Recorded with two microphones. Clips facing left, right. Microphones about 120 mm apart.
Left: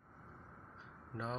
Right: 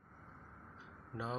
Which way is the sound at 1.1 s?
5° right (ahead or behind).